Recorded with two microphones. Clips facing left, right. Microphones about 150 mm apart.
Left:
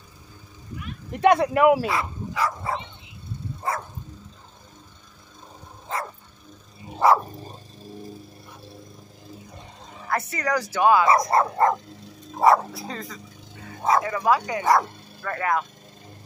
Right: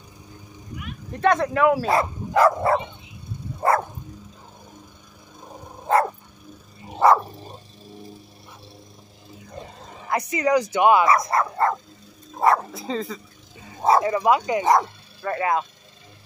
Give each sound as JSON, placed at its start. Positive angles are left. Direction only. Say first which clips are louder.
{"t": 1.1, "sound": "speech", "louder": "left 2 dB", "side_deg": 15}
{"t": 1.9, "sound": "speech", "louder": "right 5 dB", "side_deg": -50}
{"t": 3.6, "sound": "dog", "louder": "right 9 dB", "side_deg": -65}
{"t": 7.0, "sound": "dog", "louder": "right 2 dB", "side_deg": 0}
{"t": 10.0, "sound": "speech", "louder": "right 4 dB", "side_deg": -15}
{"t": 11.1, "sound": "dog", "louder": "left 1 dB", "side_deg": 25}
{"t": 12.4, "sound": "bow-wow", "louder": "left 2 dB", "side_deg": 5}
{"t": 13.8, "sound": "speech", "louder": "right 3 dB", "side_deg": -30}